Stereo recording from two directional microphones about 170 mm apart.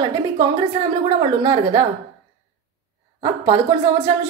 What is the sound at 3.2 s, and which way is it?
Speech, 20° right (ahead or behind).